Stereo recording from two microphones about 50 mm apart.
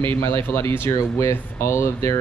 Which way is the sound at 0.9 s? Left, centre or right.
Left.